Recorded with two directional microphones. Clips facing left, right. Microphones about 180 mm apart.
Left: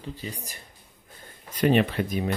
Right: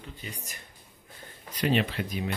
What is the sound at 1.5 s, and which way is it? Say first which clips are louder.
Speech: left 5 dB; 50° left (ahead or behind).